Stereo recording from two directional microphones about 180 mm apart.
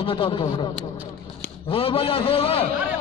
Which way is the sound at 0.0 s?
30° left (ahead or behind).